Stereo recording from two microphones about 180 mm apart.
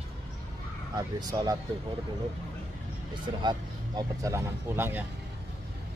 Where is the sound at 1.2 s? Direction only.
20° right (ahead or behind).